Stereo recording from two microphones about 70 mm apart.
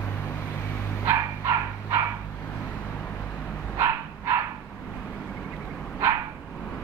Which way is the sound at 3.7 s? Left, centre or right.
Right.